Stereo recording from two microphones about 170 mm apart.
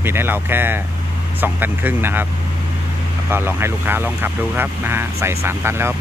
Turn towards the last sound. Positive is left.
turn(degrees=-15)  # may be behind; listen again after turning